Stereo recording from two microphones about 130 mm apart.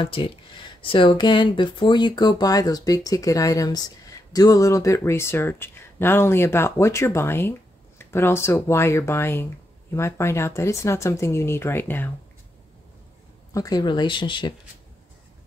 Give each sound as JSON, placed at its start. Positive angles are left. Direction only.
{"t": 0.0, "sound": "speech", "side_deg": 40}
{"t": 13.5, "sound": "speech", "side_deg": 30}